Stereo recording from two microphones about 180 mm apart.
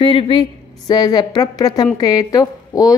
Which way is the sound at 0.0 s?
25° left (ahead or behind).